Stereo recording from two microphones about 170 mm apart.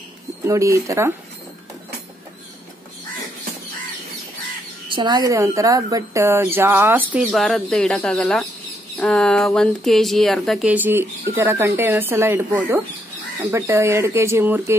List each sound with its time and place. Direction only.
0.5 s a woman's voice: 15° right (ahead or behind)
4.8 s a woman's voice: 25° right (ahead or behind); by 7.2 s 10° right (ahead or behind)
7.2 s a woman's voice: centre (ahead or behind)